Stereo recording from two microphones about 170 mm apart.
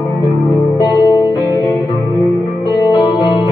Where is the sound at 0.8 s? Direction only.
20° left (ahead or behind).